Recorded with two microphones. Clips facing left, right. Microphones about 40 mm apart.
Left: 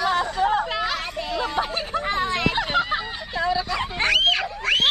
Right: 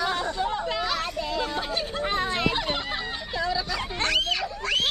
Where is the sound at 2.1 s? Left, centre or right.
Centre.